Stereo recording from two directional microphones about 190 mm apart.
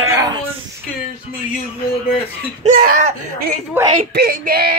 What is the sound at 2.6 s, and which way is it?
Speech, 45° right (ahead or behind).